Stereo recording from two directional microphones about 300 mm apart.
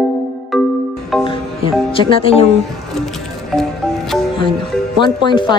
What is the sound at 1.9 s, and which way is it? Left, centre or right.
Speech, centre.